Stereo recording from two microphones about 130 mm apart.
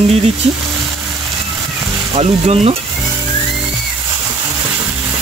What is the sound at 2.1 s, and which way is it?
Speech, 50° right (ahead or behind).